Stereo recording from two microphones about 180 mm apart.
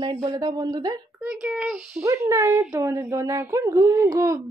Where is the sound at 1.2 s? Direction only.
5° right (ahead or behind).